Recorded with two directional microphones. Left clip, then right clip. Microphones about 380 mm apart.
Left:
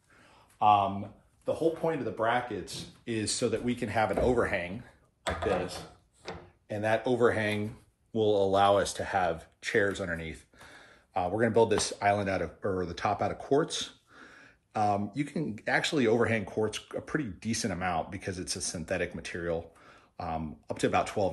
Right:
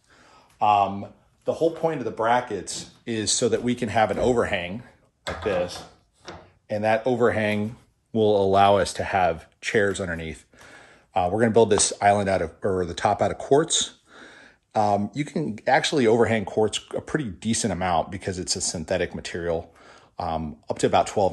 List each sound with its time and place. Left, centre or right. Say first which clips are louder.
0.6 s speech: right 4 dB; centre
1.4 s speech: right 6 dB; right
6.2 s speech: right 4 dB; right
18.5 s speech: right 11 dB; right
18.9 s speech: right 6 dB; centre